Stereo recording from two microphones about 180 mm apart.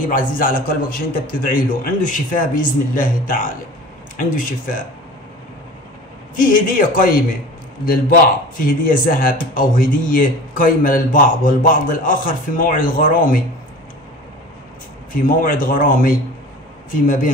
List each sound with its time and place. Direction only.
0.0 s speech: 50° left (ahead or behind)
6.3 s speech: 50° left (ahead or behind)
8.5 s speech: 50° left (ahead or behind)
15.1 s speech: 50° left (ahead or behind)